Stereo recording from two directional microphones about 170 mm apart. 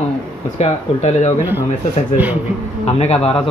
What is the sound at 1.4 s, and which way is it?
Speech, 10° right (ahead or behind).